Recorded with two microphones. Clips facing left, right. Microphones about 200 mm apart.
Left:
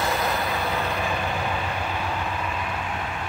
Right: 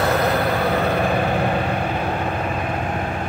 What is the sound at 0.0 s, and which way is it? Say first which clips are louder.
Vehicle: right 7 dB; 65° right (ahead or behind).